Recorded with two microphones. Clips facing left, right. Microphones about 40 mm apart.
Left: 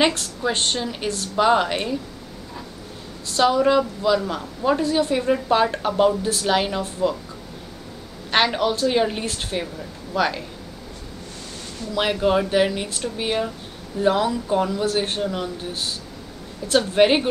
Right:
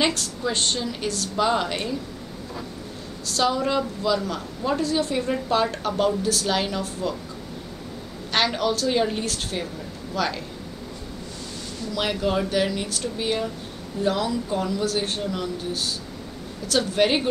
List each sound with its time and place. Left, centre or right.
0.5 s a woman's voice: left
3.3 s a woman's voice: centre
8.3 s a woman's voice: left
11.9 s a woman's voice: left
16.6 s a woman's voice: left